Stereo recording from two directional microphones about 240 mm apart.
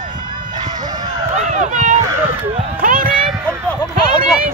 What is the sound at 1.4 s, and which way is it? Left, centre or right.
Run, right.